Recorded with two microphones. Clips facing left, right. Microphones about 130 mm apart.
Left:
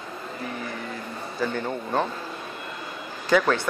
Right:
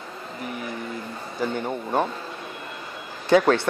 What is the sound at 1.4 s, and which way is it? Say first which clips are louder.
Speech: right 1 dB; 15° right (ahead or behind).